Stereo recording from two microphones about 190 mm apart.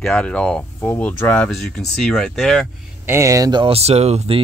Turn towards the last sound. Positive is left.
turn(degrees=-35)  # may be behind; listen again after turning